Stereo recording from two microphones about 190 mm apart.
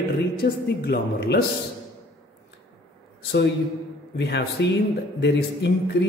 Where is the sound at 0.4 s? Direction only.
60° left (ahead or behind).